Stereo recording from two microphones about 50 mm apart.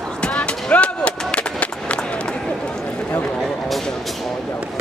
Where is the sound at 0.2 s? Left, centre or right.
Left.